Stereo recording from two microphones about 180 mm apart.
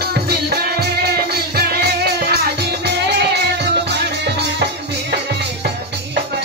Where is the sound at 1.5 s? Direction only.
65° right (ahead or behind).